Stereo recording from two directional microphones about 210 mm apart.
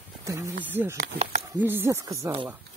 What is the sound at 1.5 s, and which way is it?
Speech, 10° right (ahead or behind).